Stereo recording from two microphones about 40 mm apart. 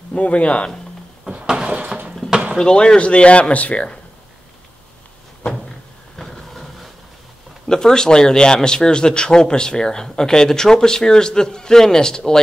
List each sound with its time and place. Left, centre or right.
0.1 s speech: left
1.3 s a sound: centre
2.6 s speech: left
6.1 s vehicle: centre
7.6 s speech: centre